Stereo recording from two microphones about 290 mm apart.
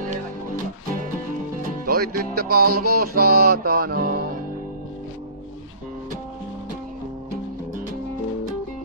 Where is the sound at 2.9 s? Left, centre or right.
Right.